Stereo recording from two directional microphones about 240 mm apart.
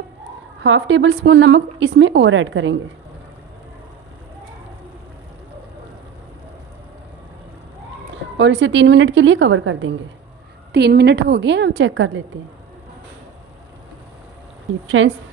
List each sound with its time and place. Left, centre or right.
0.7 s a woman's voice: right
8.4 s a woman's voice: right
15.0 s a woman's voice: right